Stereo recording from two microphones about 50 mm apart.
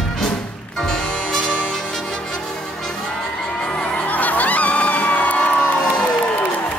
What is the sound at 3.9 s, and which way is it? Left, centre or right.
Crowd, left.